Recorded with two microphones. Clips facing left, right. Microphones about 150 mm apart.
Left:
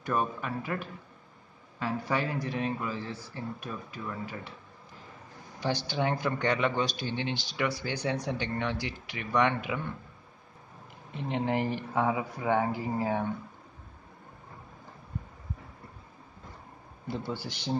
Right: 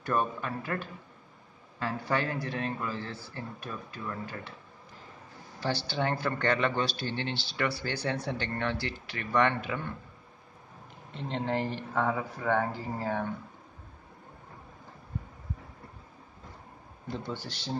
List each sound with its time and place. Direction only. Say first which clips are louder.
0.0 s speech: even; 10° left (ahead or behind)
5.6 s speech: left 1 dB; 15° left (ahead or behind)
11.1 s speech: left 2 dB; 10° left (ahead or behind)
17.3 s speech: left 3 dB; 10° left (ahead or behind)